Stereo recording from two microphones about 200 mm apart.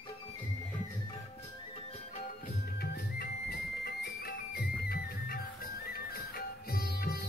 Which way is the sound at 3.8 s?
50° left (ahead or behind).